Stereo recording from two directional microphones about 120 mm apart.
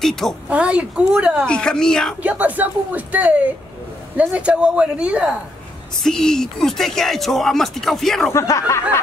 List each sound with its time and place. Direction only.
0.0 s speech: 5° left (ahead or behind)
0.5 s speech: 10° right (ahead or behind)
1.4 s speech: 10° left (ahead or behind)
2.2 s speech: 15° right (ahead or behind)
6.0 s speech: 5° left (ahead or behind)
8.3 s speech: 25° left (ahead or behind)